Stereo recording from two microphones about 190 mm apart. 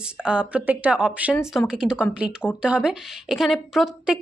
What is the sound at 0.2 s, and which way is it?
A woman's voice, 5° right (ahead or behind).